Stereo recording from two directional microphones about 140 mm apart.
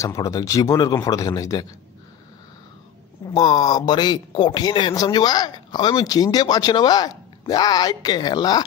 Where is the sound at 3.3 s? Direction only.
30° left (ahead or behind).